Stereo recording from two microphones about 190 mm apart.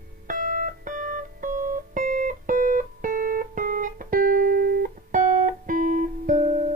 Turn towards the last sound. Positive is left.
turn(degrees=-40)  # may be behind; listen again after turning